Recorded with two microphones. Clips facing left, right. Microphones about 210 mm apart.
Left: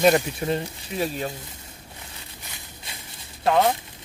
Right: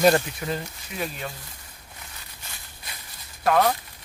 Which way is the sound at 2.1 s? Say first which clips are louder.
Left 3 dB; 25° left (ahead or behind).